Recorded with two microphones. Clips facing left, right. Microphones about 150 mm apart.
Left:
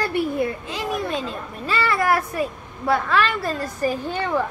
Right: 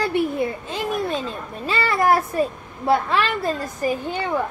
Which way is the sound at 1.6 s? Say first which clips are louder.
Right 2 dB; 20° right (ahead or behind).